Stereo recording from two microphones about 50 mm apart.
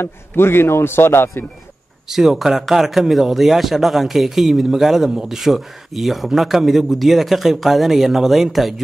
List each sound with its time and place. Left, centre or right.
0.0 s a man's voice: left
2.0 s speech: centre